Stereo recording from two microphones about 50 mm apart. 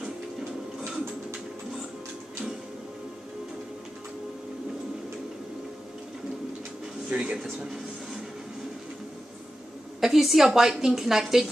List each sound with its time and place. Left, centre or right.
7.1 s speech: right
7.3 s speech: centre
9.9 s a woman's voice: centre